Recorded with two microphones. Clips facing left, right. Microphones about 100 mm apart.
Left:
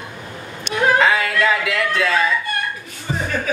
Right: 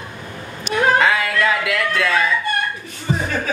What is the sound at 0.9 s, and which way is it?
Music, centre (ahead or behind).